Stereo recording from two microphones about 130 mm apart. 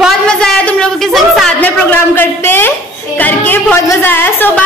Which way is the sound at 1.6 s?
15° left (ahead or behind).